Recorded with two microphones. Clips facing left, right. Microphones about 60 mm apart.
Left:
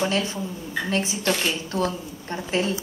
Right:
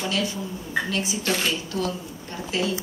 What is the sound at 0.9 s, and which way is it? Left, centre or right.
Speech, left.